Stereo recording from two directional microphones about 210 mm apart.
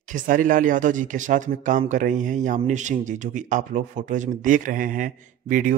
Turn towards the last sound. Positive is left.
turn(degrees=-40)  # may be behind; listen again after turning